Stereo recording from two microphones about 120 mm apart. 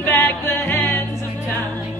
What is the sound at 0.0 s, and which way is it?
Music, 20° left (ahead or behind).